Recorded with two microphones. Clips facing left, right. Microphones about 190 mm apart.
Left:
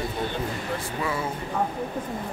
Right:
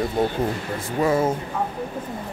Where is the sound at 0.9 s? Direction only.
45° right (ahead or behind).